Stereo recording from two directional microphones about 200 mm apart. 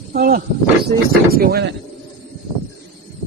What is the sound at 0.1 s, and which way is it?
Speech, 50° right (ahead or behind).